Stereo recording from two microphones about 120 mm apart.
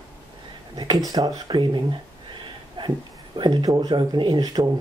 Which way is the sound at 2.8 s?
40° right (ahead or behind).